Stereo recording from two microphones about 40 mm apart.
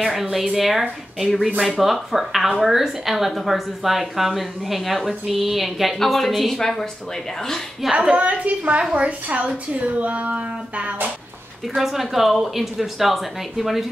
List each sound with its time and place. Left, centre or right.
0.0 s a woman's voice: centre
7.9 s a woman's voice: right
8.2 s a sound: right
11.7 s a woman's voice: centre